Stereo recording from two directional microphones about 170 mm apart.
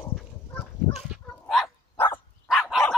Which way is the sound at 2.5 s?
Centre (ahead or behind).